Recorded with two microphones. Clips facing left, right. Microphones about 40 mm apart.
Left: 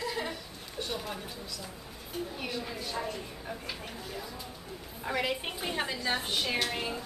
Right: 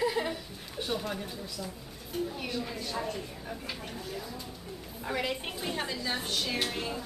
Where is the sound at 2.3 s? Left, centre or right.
Centre.